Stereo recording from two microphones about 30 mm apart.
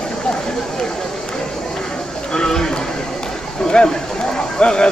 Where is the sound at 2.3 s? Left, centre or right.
Left.